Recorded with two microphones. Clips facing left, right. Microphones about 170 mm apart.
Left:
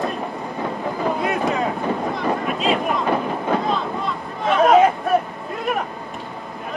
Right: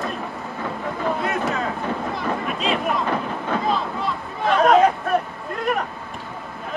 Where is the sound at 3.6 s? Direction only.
Centre (ahead or behind).